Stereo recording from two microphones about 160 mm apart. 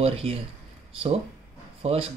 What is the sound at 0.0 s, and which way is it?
Speech, 35° right (ahead or behind).